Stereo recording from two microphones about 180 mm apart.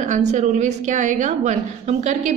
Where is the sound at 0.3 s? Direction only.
40° right (ahead or behind).